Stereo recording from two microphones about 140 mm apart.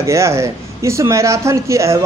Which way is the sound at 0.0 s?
20° right (ahead or behind).